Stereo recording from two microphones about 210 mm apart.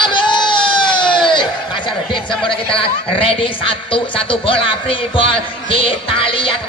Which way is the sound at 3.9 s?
25° left (ahead or behind).